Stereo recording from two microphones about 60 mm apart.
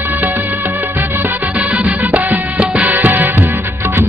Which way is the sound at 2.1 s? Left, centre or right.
Right.